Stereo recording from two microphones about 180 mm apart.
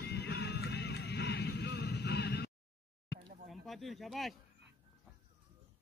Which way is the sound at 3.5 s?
Centre (ahead or behind).